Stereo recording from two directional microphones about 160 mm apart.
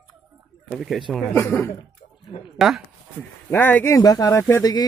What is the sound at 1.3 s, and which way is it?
Speech, 15° left (ahead or behind).